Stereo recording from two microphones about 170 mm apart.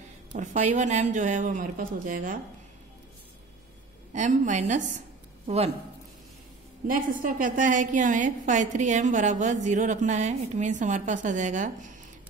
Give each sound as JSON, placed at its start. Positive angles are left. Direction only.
{"t": 0.3, "sound": "a woman's voice", "side_deg": -45}
{"t": 4.1, "sound": "a woman's voice", "side_deg": -45}
{"t": 6.9, "sound": "a woman's voice", "side_deg": -55}